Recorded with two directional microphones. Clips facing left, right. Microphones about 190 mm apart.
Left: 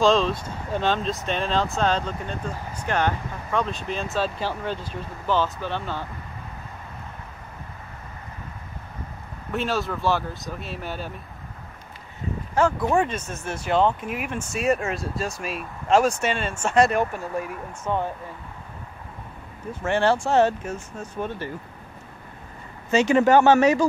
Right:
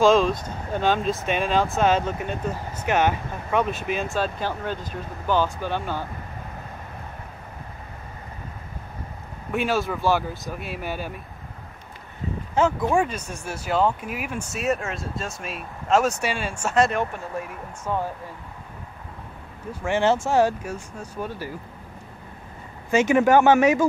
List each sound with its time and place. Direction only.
0.0 s speech: centre (ahead or behind)
4.1 s speech: centre (ahead or behind)
9.5 s speech: centre (ahead or behind)
12.9 s speech: 10° right (ahead or behind)
19.8 s speech: 15° right (ahead or behind)
22.8 s speech: 15° right (ahead or behind)